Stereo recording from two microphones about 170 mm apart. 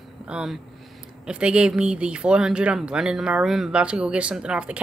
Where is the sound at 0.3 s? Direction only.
5° right (ahead or behind).